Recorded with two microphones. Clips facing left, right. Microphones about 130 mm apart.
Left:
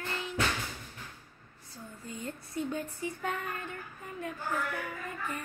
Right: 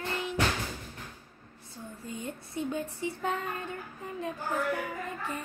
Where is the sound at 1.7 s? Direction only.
20° right (ahead or behind).